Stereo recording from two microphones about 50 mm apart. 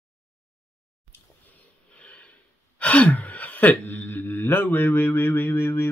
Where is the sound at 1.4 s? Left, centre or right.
Left.